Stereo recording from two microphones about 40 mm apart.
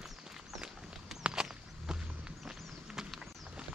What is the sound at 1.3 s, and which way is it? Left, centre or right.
Walk, centre.